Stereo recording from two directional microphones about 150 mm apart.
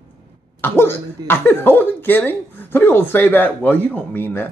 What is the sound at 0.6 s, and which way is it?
Speech, 15° left (ahead or behind).